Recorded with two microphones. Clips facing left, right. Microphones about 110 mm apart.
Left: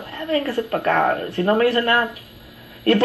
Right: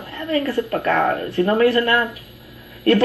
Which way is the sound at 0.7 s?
35° left (ahead or behind).